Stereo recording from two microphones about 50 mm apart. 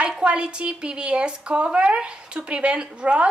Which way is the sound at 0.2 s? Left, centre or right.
Right.